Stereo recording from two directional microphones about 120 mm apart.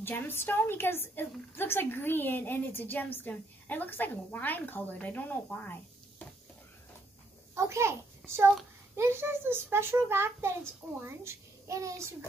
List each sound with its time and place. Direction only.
0.0 s a woman's voice: 20° left (ahead or behind)
7.5 s a child's voice: 25° right (ahead or behind)